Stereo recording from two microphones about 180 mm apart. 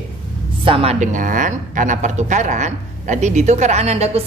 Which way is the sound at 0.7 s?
35° right (ahead or behind).